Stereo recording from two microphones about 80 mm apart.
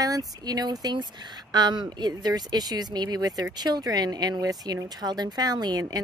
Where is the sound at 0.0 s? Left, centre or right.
Right.